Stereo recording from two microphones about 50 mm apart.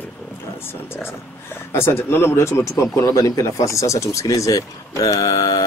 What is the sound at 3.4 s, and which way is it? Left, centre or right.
Speech, left.